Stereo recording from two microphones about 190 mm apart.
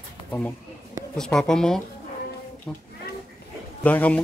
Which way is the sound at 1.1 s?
5° left (ahead or behind).